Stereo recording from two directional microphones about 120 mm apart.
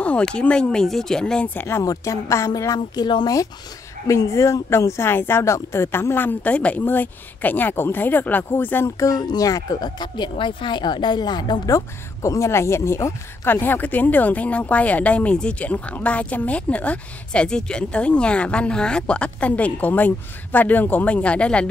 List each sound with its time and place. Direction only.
0.0 s speech: 10° left (ahead or behind); by 3.3 s 40° left (ahead or behind)
4.1 s speech: 25° left (ahead or behind)
9.1 s speech: 30° left (ahead or behind); by 21.6 s 10° left (ahead or behind)